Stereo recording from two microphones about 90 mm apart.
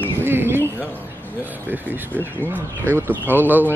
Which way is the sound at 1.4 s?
20° right (ahead or behind).